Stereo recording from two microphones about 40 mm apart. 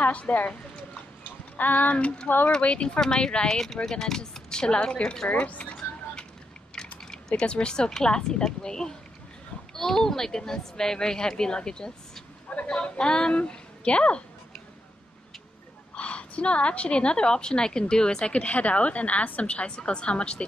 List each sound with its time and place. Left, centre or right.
0.0 s a woman's voice: left
1.2 s a sound: left
2.2 s speech: left
2.6 s a woman's voice: left
5.3 s speech: left
6.7 s mechanisms: centre
7.4 s a woman's voice: left
15.9 s a woman's voice: left
19.7 s a woman's voice: left